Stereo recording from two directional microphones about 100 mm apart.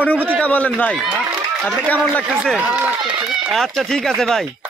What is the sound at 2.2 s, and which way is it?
Speech, 5° right (ahead or behind).